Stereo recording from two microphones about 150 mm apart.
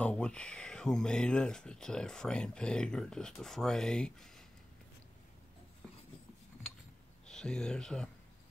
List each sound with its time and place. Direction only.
0.0 s speech: 5° left (ahead or behind)
7.2 s speech: 5° left (ahead or behind)